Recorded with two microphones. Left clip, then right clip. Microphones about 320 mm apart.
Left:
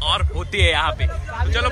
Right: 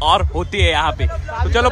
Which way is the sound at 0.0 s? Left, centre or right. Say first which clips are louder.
Right 7 dB; centre.